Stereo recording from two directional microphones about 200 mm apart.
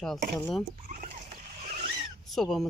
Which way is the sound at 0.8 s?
40° right (ahead or behind).